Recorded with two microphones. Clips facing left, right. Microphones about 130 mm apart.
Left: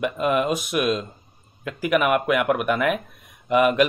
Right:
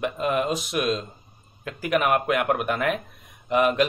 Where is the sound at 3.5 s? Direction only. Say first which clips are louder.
Left 3 dB; 60° left (ahead or behind).